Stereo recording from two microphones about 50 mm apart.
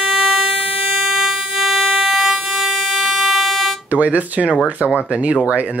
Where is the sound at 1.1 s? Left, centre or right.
Centre.